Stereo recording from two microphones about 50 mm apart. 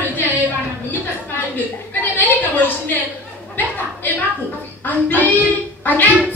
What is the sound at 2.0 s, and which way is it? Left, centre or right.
Speech, left.